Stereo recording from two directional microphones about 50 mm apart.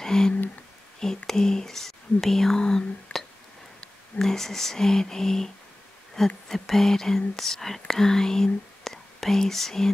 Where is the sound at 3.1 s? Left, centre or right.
Left.